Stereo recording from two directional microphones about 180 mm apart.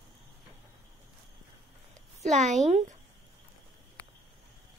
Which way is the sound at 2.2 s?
40° right (ahead or behind).